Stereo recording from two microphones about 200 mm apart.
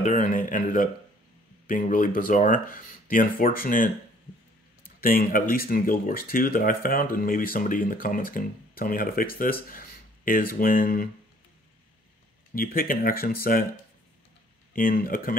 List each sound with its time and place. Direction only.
0.0 s a man's voice: 40° left (ahead or behind)
5.0 s speech: 45° left (ahead or behind)
12.5 s speech: 45° left (ahead or behind)
14.7 s speech: 45° left (ahead or behind)